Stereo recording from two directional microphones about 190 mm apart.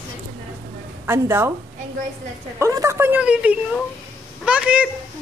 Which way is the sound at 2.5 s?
15° right (ahead or behind).